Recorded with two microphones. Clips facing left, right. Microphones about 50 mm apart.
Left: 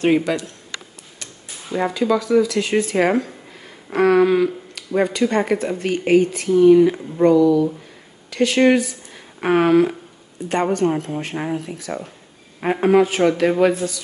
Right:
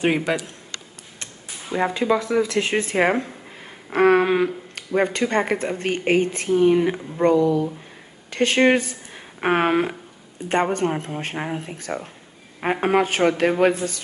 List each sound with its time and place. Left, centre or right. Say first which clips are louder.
0.0 s a man's voice: left 3 dB; centre
2.0 s speech: left 5 dB; right